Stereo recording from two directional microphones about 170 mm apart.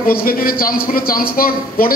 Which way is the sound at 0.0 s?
60° left (ahead or behind).